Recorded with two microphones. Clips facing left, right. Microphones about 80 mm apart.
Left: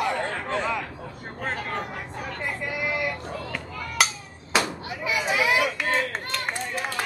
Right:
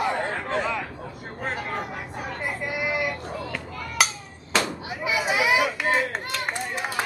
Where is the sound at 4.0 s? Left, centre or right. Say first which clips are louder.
Even; centre.